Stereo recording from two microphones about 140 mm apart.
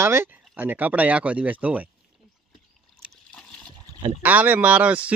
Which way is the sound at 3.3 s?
5° left (ahead or behind).